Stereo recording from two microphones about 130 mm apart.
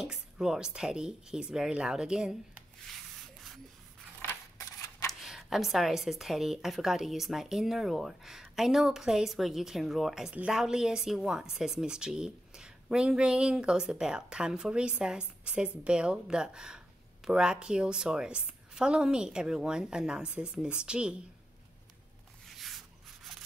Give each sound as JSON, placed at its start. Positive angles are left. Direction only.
{"t": 0.0, "sound": "a woman's voice", "side_deg": -5}
{"t": 4.2, "sound": "a sound", "side_deg": 20}
{"t": 5.2, "sound": "a woman's voice", "side_deg": -5}